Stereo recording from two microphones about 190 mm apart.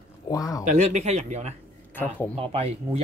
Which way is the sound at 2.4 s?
30° right (ahead or behind).